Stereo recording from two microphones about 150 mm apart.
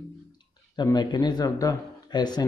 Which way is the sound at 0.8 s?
30° left (ahead or behind).